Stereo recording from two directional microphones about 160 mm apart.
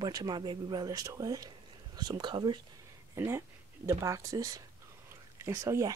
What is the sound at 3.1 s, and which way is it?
Speech, 15° right (ahead or behind).